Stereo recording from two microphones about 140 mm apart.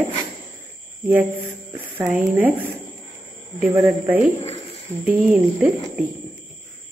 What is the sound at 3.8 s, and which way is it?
A man's voice, 10° right (ahead or behind).